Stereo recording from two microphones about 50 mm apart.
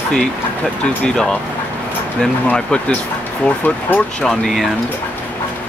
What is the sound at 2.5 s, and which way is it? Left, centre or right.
Speech, left.